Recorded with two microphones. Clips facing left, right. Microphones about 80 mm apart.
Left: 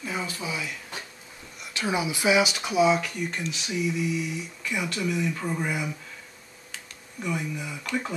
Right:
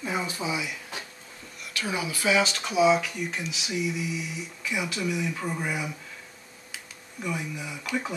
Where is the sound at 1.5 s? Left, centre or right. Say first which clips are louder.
Left 3 dB; left.